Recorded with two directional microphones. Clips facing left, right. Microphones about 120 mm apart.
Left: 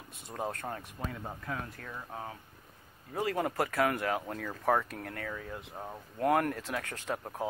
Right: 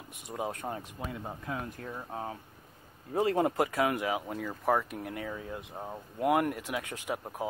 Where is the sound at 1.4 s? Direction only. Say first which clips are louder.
Right 2 dB; 20° right (ahead or behind).